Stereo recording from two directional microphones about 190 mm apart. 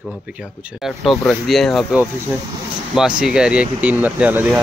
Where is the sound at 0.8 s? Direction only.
Centre (ahead or behind).